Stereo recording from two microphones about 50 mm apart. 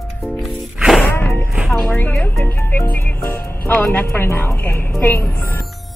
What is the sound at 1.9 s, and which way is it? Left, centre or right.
Music, left.